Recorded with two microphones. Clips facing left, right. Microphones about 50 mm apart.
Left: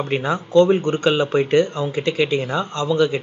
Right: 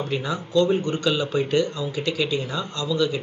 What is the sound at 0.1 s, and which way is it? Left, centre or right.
Speech, left.